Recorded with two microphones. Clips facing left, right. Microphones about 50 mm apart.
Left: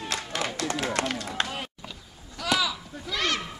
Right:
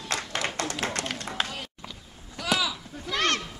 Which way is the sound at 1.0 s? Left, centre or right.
Left.